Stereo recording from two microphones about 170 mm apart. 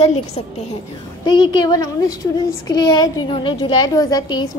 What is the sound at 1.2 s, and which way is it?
A woman's voice, 25° left (ahead or behind).